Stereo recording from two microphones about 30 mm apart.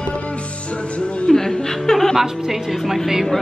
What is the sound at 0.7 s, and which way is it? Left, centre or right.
Music, left.